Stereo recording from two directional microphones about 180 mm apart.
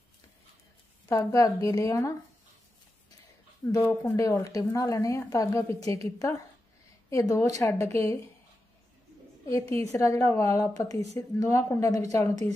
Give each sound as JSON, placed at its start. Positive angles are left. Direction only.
{"t": 1.0, "sound": "a woman's voice", "side_deg": 20}
{"t": 3.8, "sound": "a woman's voice", "side_deg": 15}
{"t": 9.5, "sound": "a woman's voice", "side_deg": 15}